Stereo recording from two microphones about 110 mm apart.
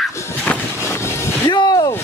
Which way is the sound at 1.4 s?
45° left (ahead or behind).